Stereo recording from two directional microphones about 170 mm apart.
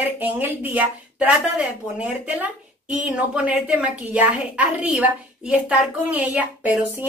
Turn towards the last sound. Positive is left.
turn(degrees=-10)  # may be behind; listen again after turning